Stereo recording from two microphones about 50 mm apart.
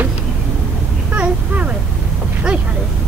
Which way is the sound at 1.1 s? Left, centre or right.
Right.